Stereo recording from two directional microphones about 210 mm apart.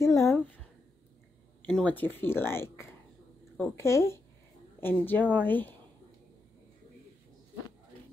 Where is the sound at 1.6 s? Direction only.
10° left (ahead or behind).